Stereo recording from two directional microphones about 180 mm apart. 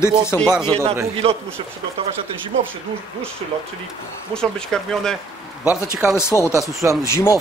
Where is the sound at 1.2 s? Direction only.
35° right (ahead or behind).